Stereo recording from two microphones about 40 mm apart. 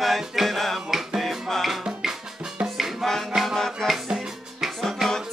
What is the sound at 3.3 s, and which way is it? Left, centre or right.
Music, centre.